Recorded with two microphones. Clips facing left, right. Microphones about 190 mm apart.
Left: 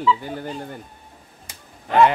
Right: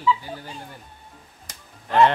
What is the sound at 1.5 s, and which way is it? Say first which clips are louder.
Music: left 2 dB; 5° left (ahead or behind).